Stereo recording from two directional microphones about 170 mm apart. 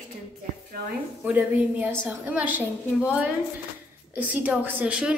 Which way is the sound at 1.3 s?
10° right (ahead or behind).